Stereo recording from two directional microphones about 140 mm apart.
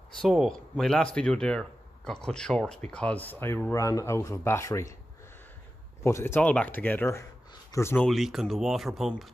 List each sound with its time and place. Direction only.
0.2 s speech: centre (ahead or behind); by 4.9 s 20° left (ahead or behind)
6.0 s speech: 20° left (ahead or behind)
8.0 s speech: centre (ahead or behind)